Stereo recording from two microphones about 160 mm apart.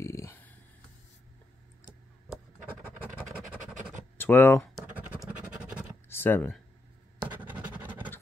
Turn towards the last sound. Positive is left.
turn(degrees=-10)  # may be behind; listen again after turning